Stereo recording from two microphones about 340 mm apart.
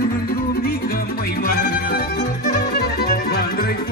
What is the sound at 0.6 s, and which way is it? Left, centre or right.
Music, left.